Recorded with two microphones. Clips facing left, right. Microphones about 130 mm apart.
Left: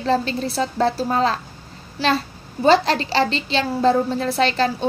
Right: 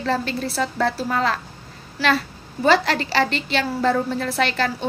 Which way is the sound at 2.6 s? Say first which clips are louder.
Left 2 dB; 25° left (ahead or behind).